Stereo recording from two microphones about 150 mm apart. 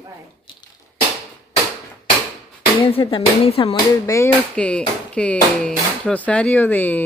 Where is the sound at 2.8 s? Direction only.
35° left (ahead or behind).